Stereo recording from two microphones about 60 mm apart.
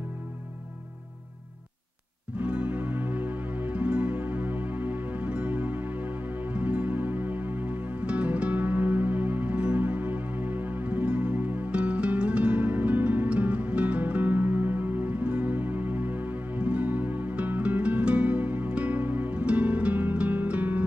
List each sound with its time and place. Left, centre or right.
2.4 s music: right